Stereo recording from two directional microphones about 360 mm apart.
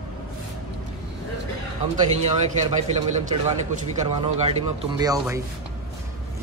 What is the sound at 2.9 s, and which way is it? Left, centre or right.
A man's voice, centre.